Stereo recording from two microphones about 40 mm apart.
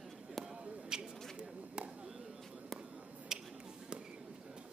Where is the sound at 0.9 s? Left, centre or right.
Centre.